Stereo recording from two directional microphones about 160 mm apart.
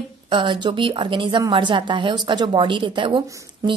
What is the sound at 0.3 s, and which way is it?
A woman's voice, 30° right (ahead or behind).